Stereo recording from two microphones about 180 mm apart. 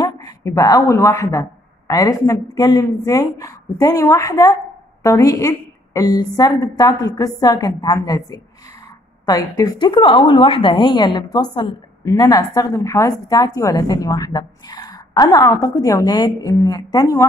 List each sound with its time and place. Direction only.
0.0 s a woman's voice: 20° left (ahead or behind)